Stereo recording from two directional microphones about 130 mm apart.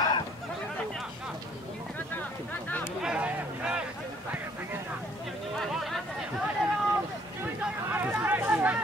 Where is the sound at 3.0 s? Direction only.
5° right (ahead or behind).